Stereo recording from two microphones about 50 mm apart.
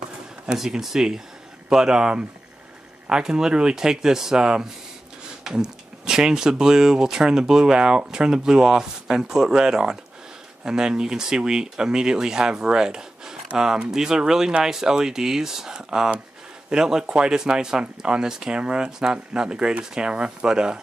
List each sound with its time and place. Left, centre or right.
0.5 s speech: centre